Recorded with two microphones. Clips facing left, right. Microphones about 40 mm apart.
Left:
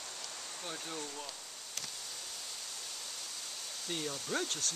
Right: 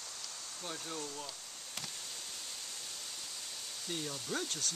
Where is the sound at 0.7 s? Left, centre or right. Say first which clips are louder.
Right 1 dB; centre.